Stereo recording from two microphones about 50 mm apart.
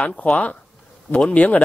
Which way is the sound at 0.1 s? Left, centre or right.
Left.